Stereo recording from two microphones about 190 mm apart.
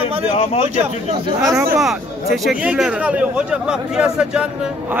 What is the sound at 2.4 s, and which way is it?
Speech, 5° right (ahead or behind).